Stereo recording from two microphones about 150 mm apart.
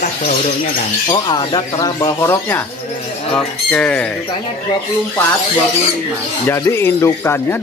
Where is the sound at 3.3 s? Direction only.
5° left (ahead or behind).